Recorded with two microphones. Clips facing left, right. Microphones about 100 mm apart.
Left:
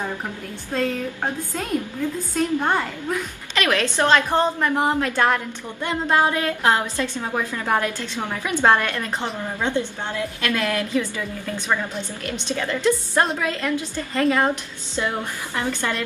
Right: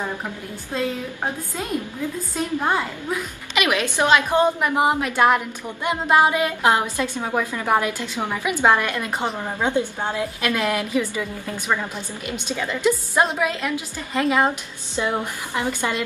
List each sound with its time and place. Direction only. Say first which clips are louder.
0.7 s a woman's voice: left 2 dB; 10° right (ahead or behind)